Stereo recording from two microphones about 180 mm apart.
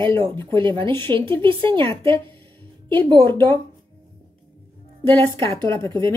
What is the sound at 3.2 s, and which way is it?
Speech, 10° left (ahead or behind).